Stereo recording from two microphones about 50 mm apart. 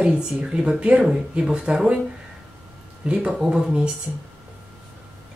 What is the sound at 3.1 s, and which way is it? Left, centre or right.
Speech, centre.